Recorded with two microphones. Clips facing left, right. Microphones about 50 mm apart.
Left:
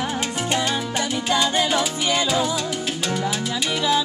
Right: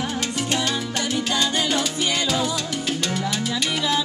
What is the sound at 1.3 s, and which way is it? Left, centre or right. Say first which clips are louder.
Salsa music: left 5 dB; left.